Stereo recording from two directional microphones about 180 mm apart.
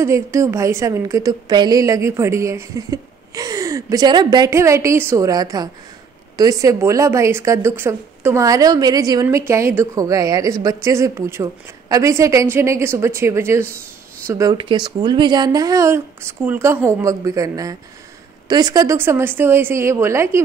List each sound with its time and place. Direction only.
0.0 s a woman's voice: 15° right (ahead or behind)